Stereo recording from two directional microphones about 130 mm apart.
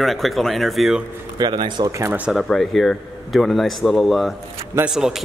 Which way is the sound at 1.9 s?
20° right (ahead or behind).